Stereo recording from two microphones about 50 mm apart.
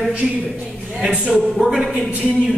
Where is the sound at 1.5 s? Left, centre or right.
Centre.